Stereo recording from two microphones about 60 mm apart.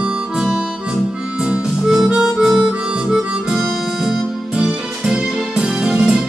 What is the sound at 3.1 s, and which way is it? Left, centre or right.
Music, centre.